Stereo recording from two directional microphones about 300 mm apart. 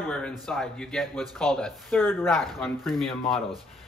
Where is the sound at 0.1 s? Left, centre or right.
Centre.